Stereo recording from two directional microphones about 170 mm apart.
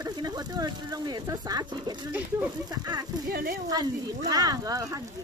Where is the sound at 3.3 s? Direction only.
60° right (ahead or behind).